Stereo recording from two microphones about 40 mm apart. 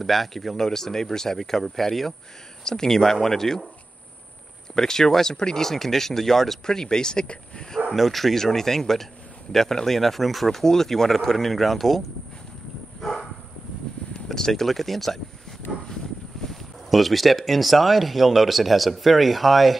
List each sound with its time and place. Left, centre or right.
0.0 s speech: centre
4.7 s speech: centre
7.9 s speech: centre
13.0 s dog: centre
14.3 s speech: centre
15.7 s a sound: centre
16.4 s speech: centre